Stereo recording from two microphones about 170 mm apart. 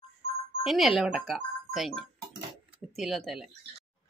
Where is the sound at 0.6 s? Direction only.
Centre (ahead or behind).